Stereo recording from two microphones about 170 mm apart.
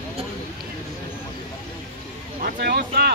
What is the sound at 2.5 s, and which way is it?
Boat, 75° right (ahead or behind).